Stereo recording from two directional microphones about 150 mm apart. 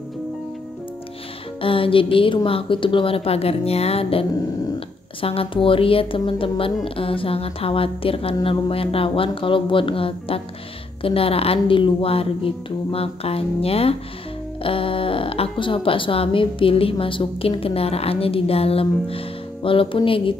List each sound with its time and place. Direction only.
1.6 s speech: 35° left (ahead or behind)